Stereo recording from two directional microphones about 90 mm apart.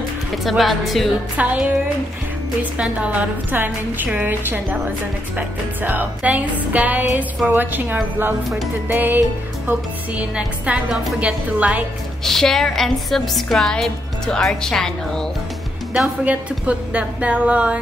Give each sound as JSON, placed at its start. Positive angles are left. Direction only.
{"t": 0.4, "sound": "a woman's voice", "side_deg": 0}
{"t": 1.3, "sound": "speech", "side_deg": -15}
{"t": 2.8, "sound": "a woman's voice", "side_deg": -15}
{"t": 5.8, "sound": "a woman's voice", "side_deg": -20}
{"t": 12.3, "sound": "a woman's voice", "side_deg": 5}
{"t": 16.3, "sound": "speech", "side_deg": -15}